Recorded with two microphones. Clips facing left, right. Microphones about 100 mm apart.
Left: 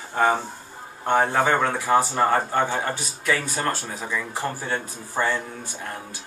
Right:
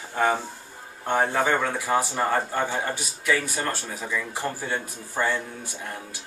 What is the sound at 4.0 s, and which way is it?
Speech, 15° left (ahead or behind).